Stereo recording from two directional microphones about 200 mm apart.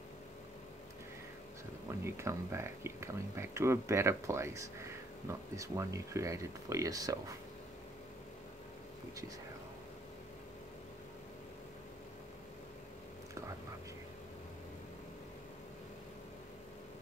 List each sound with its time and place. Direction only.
1.9 s speech: 15° right (ahead or behind)